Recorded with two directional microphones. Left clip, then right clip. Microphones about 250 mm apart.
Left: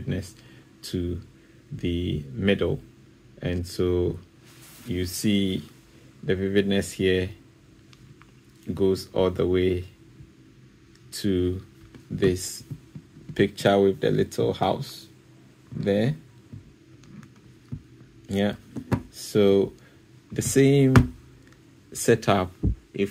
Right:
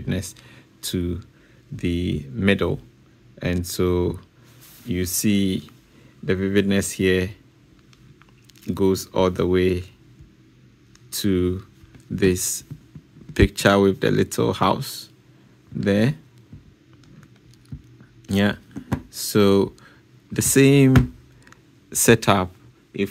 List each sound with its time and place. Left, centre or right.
0.0 s speech: right
8.7 s speech: right
11.1 s speech: right
18.2 s speech: right
21.5 s a sound: right
22.9 s speech: centre